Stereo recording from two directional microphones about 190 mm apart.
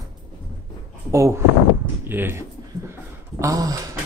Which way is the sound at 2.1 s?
10° right (ahead or behind).